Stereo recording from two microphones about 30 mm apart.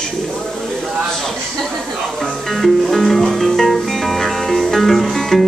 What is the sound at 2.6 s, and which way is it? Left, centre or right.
Music, centre.